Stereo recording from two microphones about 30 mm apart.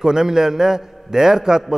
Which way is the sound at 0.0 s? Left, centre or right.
Centre.